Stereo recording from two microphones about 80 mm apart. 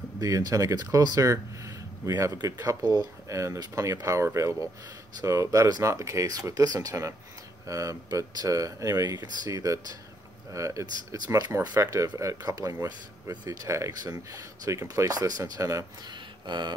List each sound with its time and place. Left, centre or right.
0.2 s speech: right
14.1 s speech: right
14.7 s speech: right
16.4 s speech: right